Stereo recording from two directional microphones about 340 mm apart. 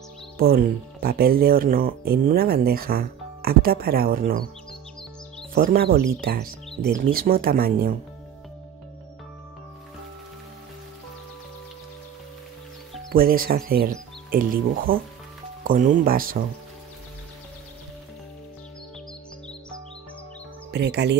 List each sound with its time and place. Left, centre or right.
0.4 s speech: right
5.5 s speech: right
6.7 s music: centre
7.1 s speech: right
13.1 s speech: right
20.7 s speech: right